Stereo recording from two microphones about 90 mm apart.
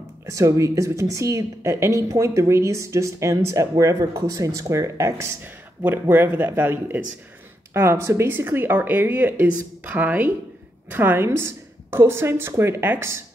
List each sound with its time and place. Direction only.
0.3 s a woman's voice: 35° right (ahead or behind)